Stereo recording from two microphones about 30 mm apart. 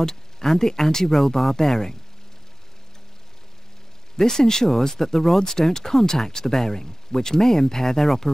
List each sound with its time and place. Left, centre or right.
0.0 s speech: centre
4.2 s speech: centre